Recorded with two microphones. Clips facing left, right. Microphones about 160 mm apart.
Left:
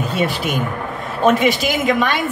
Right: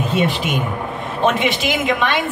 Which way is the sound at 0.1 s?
40° left (ahead or behind).